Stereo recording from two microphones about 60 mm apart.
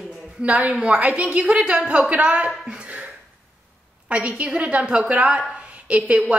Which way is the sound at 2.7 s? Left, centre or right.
Right.